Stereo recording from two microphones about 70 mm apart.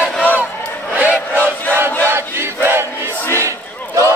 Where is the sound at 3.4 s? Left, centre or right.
Right.